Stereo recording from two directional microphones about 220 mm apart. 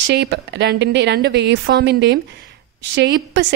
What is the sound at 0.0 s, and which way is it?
A woman's voice, 50° right (ahead or behind).